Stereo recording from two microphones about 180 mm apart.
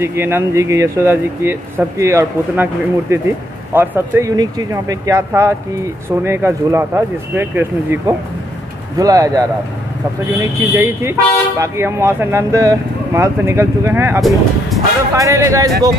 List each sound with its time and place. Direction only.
0.0 s speech: 15° right (ahead or behind)
10.4 s speech: 15° right (ahead or behind)
14.7 s music: centre (ahead or behind)
15.1 s speech: 20° right (ahead or behind)